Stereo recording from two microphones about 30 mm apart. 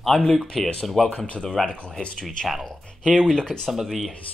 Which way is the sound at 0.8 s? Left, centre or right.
Centre.